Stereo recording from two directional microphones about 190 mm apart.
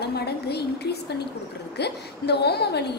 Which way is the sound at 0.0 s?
60° left (ahead or behind).